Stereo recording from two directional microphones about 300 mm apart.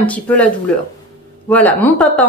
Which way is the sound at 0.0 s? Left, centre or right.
Centre.